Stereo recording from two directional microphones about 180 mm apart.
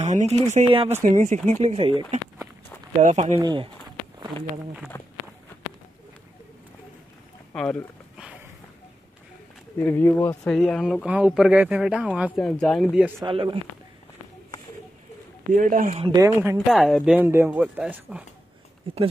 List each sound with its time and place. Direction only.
0.0 s speech: 40° right (ahead or behind)
1.0 s speech: 45° right (ahead or behind)
3.0 s speech: 40° right (ahead or behind)
4.9 s speech: 15° left (ahead or behind)
7.5 s a sound: 5° left (ahead or behind)
9.8 s speech: 15° left (ahead or behind); by 12.3 s 5° right (ahead or behind)
12.3 s speech: 5° left (ahead or behind)
13.2 s speech: 30° right (ahead or behind)
15.5 s speech: 45° right (ahead or behind)
16.0 s speech: 20° right (ahead or behind)
16.5 s speech: centre (ahead or behind)